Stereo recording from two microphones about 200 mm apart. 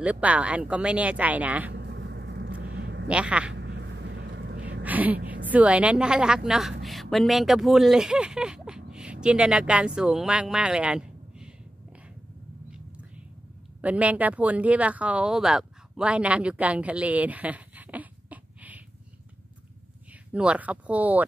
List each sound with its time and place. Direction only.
0.0 s speech: 5° right (ahead or behind)
1.7 s a sound: 60° right (ahead or behind)
3.1 s speech: 5° right (ahead or behind)
3.5 s vehicle: 60° right (ahead or behind)
4.8 s a woman's voice: 10° right (ahead or behind)
13.7 s speech: 5° right (ahead or behind)
20.3 s speech: 5° right (ahead or behind)